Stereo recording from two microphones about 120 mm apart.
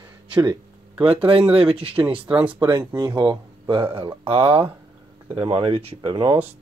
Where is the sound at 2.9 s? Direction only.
35° right (ahead or behind); by 6.0 s 55° right (ahead or behind).